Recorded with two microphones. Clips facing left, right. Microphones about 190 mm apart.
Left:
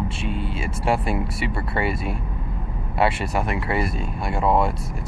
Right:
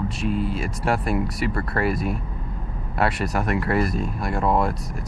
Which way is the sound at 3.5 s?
Centre (ahead or behind).